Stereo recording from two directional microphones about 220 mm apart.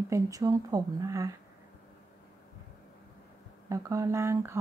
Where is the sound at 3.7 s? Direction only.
15° right (ahead or behind).